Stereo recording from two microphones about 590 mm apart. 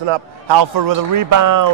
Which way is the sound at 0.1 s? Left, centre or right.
Right.